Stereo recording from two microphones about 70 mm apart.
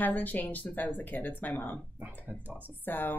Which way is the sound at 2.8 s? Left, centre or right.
Left.